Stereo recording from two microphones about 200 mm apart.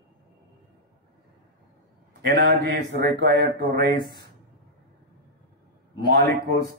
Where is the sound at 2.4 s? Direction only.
55° right (ahead or behind).